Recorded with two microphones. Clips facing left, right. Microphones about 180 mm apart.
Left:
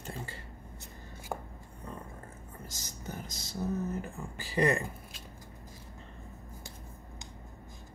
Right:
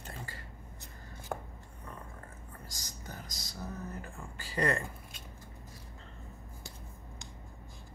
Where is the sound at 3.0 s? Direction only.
25° left (ahead or behind).